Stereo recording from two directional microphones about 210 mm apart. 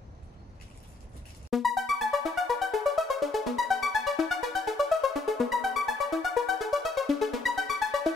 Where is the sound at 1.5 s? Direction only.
Centre (ahead or behind).